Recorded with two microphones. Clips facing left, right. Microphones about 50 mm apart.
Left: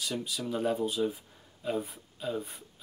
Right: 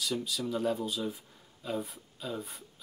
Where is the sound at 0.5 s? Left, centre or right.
Left.